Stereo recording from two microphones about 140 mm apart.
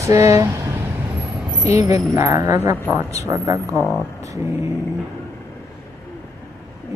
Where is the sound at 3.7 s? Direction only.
5° left (ahead or behind).